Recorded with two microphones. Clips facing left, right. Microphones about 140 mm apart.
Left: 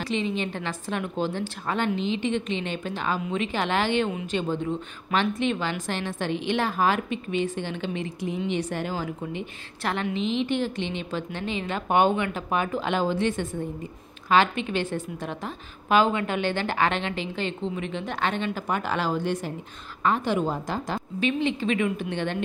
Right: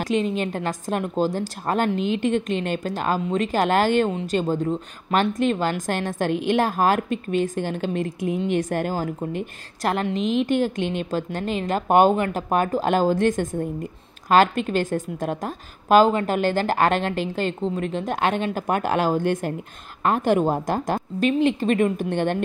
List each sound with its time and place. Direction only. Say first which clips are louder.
0.0 s a woman's voice: right 5 dB; 45° right (ahead or behind)